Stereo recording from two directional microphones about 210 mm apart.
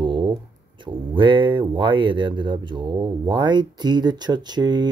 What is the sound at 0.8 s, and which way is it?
Speech, 25° right (ahead or behind).